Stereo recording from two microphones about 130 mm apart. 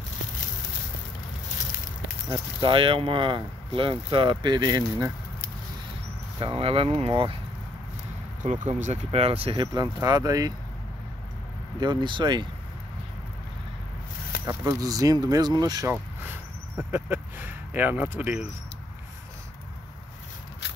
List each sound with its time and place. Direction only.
2.6 s speech: 40° right (ahead or behind)
6.4 s speech: 45° right (ahead or behind)
8.5 s speech: 70° right (ahead or behind); by 10.5 s 30° right (ahead or behind)
11.8 s speech: 35° right (ahead or behind)
14.4 s speech: 25° right (ahead or behind)
15.9 s speech: 15° right (ahead or behind)